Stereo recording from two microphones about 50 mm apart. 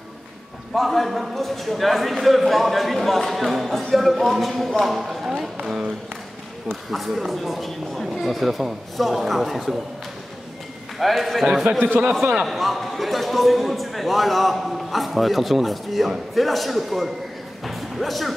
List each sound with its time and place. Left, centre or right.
0.7 s a man's voice: centre
6.9 s a man's voice: centre
11.0 s a man's voice: centre
11.8 s a man's voice: right
12.4 s a man's voice: centre